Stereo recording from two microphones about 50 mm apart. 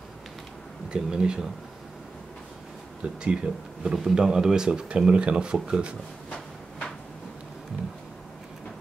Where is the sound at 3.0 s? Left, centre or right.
Centre.